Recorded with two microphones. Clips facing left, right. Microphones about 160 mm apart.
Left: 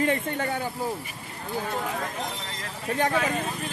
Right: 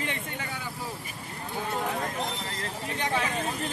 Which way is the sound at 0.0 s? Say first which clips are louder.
Left 9 dB; 50° left (ahead or behind).